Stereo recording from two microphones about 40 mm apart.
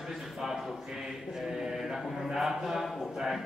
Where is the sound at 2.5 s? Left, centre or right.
Centre.